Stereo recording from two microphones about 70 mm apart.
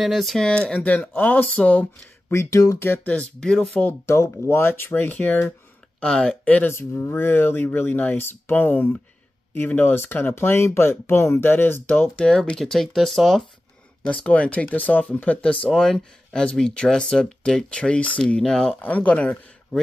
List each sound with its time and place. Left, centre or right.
0.0 s speech: centre
0.7 s speech: left
2.2 s speech: left
2.8 s speech: left
3.3 s speech: centre
4.0 s speech: left
5.9 s speech: centre
6.4 s speech: left
6.7 s speech: left
12.2 s speech: centre
14.0 s speech: centre
18.8 s speech: left